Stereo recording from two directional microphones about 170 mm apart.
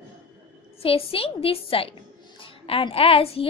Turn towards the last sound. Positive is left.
turn(degrees=35)  # may be behind; listen again after turning